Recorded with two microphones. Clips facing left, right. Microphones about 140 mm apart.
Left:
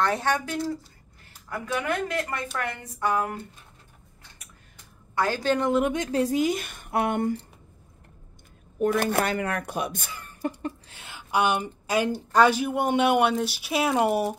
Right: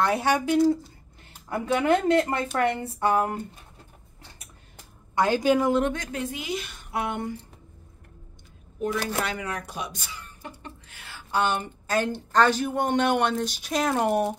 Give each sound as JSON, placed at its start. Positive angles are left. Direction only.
{"t": 0.0, "sound": "a woman's voice", "side_deg": -10}
{"t": 1.5, "sound": "a woman's voice", "side_deg": -30}
{"t": 5.1, "sound": "a woman's voice", "side_deg": -20}
{"t": 5.9, "sound": "speech", "side_deg": 35}
{"t": 8.7, "sound": "speech", "side_deg": 55}
{"t": 10.9, "sound": "a woman's voice", "side_deg": 20}